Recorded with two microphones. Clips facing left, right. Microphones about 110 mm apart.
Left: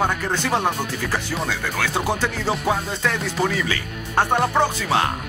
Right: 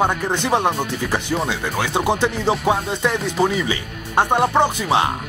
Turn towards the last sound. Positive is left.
turn(degrees=-20)  # may be behind; listen again after turning